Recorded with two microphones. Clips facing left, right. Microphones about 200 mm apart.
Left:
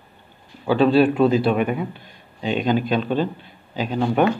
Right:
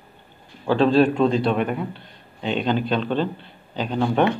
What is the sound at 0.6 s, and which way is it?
Speech, 5° left (ahead or behind).